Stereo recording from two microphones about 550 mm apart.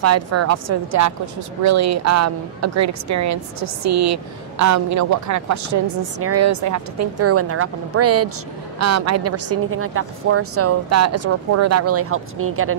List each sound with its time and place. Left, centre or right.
0.0 s a woman's voice: right